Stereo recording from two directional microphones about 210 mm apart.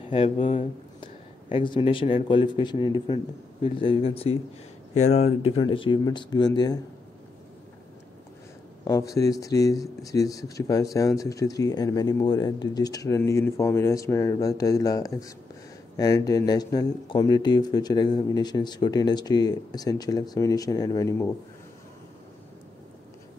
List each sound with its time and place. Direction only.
0.1 s speech: 30° left (ahead or behind)
8.8 s speech: 15° left (ahead or behind)